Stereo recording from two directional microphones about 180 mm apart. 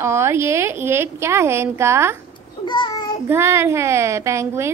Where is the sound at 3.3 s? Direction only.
15° right (ahead or behind).